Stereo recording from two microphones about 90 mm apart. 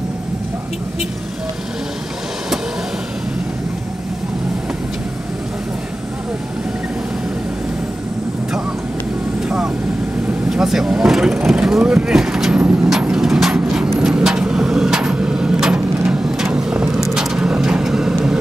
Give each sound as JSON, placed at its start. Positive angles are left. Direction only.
{"t": 10.5, "sound": "speech", "side_deg": -5}
{"t": 12.5, "sound": "vehicle", "side_deg": -15}